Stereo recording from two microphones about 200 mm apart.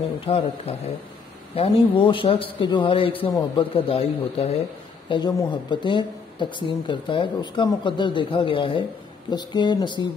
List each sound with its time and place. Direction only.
0.2 s speech: 30° left (ahead or behind)